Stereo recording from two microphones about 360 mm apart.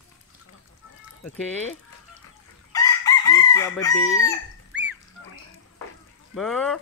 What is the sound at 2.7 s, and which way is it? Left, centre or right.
Chicken, centre.